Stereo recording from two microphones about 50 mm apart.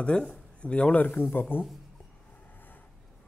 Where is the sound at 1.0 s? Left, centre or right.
Left.